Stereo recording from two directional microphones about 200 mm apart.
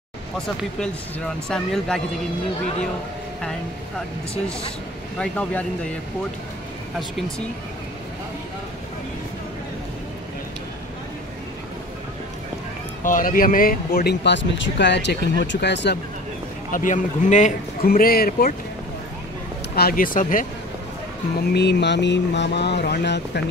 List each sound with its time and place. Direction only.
0.7 s speech: 5° left (ahead or behind)
5.2 s speech: 5° left (ahead or behind)
7.0 s speech: centre (ahead or behind)
13.0 s speech: 45° left (ahead or behind); by 16.0 s 60° left (ahead or behind)
16.7 s a man's voice: 40° left (ahead or behind)
19.7 s a man's voice: 50° left (ahead or behind)
21.4 s speech: 55° left (ahead or behind)